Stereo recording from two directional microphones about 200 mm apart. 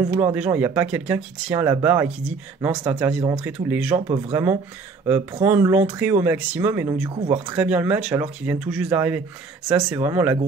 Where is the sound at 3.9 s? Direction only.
30° right (ahead or behind).